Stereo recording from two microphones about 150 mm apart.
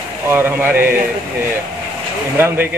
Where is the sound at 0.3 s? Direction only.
15° right (ahead or behind).